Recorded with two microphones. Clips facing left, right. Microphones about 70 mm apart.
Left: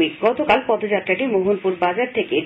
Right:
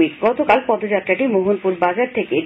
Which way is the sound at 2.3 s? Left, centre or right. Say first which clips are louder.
Right 2 dB; right.